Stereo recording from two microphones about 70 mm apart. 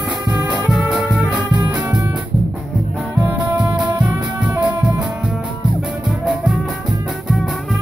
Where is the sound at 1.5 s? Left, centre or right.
Right.